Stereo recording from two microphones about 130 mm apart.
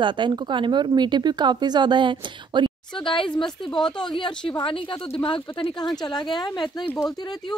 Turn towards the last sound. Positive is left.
turn(degrees=30)  # may be behind; listen again after turning